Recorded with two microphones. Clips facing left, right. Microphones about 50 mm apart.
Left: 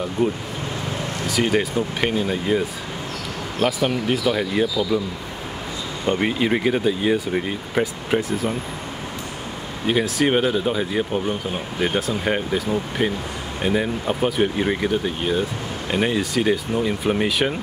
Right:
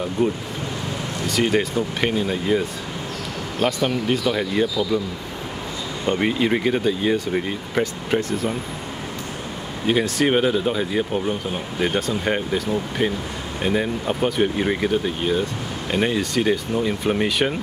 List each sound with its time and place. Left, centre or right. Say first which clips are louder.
0.2 s speech: even; centre
6.0 s speech: even; centre
9.8 s speech: even; centre